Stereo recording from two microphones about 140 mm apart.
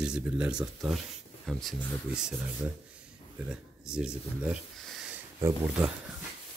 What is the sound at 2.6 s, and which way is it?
Speech, 15° right (ahead or behind).